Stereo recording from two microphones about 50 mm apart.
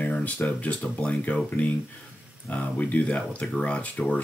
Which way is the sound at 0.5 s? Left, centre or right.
Left.